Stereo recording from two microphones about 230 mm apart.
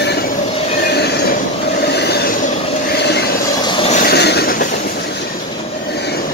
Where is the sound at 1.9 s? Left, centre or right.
Left.